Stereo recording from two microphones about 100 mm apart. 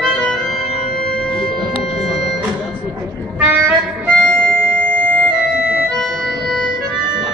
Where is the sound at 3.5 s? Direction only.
20° right (ahead or behind).